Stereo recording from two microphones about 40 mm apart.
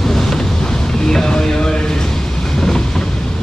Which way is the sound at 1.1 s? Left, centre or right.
Centre.